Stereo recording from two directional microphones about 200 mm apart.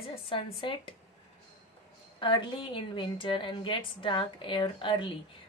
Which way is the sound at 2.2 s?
25° left (ahead or behind).